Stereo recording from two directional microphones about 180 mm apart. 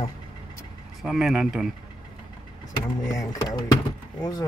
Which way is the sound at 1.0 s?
Centre (ahead or behind).